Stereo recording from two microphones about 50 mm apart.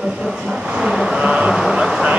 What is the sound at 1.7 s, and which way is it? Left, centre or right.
Vehicle, centre.